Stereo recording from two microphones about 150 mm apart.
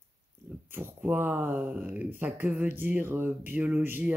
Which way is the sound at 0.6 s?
15° right (ahead or behind).